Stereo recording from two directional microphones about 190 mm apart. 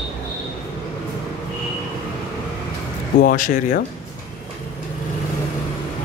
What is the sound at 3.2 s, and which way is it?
Speech, 45° left (ahead or behind).